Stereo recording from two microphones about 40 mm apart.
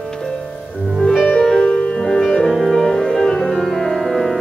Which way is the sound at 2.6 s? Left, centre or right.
Centre.